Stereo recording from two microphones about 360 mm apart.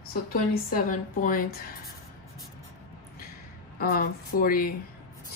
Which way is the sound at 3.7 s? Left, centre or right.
Left.